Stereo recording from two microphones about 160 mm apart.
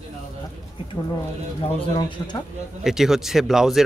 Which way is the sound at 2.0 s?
25° left (ahead or behind).